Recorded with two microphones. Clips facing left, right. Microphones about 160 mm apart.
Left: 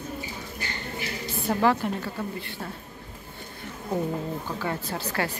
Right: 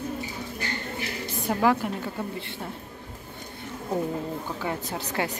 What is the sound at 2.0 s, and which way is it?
Speech, 25° right (ahead or behind).